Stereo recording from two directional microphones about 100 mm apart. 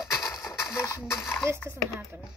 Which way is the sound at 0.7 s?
25° left (ahead or behind).